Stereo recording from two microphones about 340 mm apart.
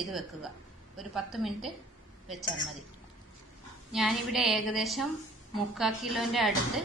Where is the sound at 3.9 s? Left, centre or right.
Centre.